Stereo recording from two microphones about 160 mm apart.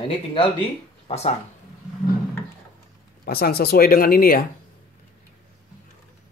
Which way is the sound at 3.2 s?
75° left (ahead or behind).